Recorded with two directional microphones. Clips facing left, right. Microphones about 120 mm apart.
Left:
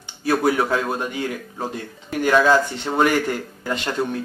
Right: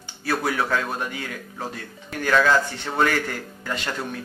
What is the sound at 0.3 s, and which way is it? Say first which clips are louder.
Speech: left 5 dB; 20° left (ahead or behind).